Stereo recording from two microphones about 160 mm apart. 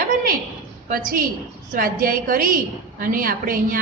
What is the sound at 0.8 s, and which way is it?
A woman's voice, 60° right (ahead or behind).